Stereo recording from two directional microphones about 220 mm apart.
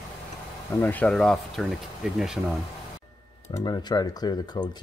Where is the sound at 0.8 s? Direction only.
5° left (ahead or behind).